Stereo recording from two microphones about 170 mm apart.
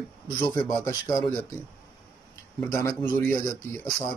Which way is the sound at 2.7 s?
15° left (ahead or behind).